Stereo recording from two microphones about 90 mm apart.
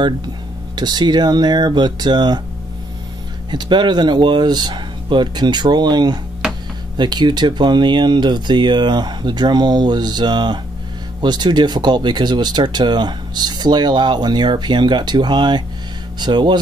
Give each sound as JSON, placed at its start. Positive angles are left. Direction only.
{"t": 0.7, "sound": "speech", "side_deg": -55}
{"t": 3.4, "sound": "speech", "side_deg": -55}